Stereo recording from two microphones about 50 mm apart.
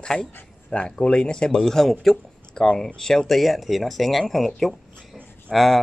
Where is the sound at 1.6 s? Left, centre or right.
Centre.